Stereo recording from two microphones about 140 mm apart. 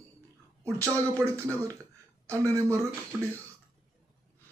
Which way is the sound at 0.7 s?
20° right (ahead or behind).